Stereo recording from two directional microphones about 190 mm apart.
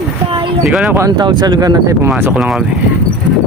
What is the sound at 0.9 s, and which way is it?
Speech, 20° right (ahead or behind).